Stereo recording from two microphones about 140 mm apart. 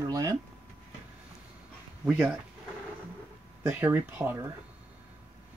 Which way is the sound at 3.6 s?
15° right (ahead or behind).